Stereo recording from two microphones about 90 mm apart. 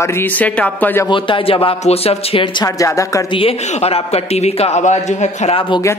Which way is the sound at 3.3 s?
85° left.